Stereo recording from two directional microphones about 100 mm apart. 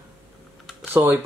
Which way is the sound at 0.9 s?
20° right (ahead or behind).